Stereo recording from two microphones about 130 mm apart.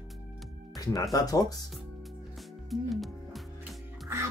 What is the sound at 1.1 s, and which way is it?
Speech, 30° left (ahead or behind).